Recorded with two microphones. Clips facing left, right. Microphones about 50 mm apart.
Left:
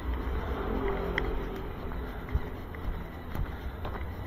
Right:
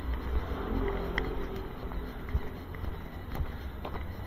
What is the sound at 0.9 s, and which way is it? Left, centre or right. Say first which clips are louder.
Music: left 2 dB; centre.